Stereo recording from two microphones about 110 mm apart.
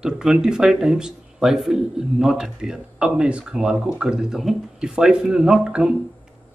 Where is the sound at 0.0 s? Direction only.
5° right (ahead or behind).